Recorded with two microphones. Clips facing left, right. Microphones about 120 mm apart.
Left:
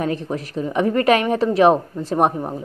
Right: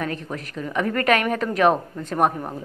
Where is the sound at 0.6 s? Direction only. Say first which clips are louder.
Left 5 dB; 30° left (ahead or behind).